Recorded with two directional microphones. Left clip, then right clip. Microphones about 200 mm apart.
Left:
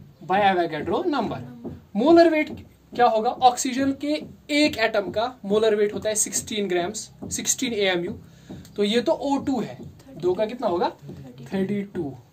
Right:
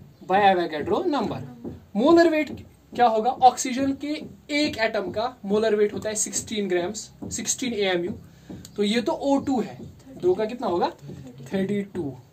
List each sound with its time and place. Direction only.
0.3 s a man's voice: 15° left (ahead or behind)
3.0 s a woman's voice: 30° left (ahead or behind)
11.5 s speech: 10° left (ahead or behind)